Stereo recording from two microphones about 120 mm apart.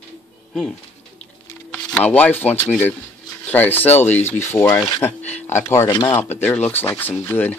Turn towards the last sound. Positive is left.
turn(degrees=20)  # may be behind; listen again after turning